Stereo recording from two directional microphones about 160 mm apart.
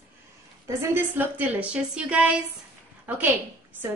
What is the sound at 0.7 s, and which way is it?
A woman's voice, 15° right (ahead or behind).